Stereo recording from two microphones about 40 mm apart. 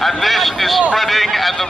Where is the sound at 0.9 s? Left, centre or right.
Centre.